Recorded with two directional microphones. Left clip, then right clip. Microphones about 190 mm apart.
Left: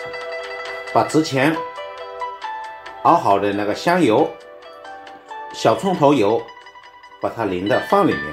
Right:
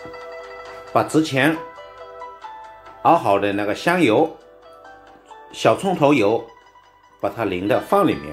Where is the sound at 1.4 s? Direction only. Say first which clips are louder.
Even; 20° right (ahead or behind).